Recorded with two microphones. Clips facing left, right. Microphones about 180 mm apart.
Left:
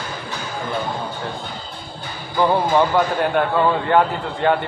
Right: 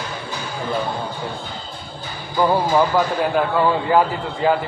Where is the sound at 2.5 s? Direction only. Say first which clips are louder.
Even; centre (ahead or behind).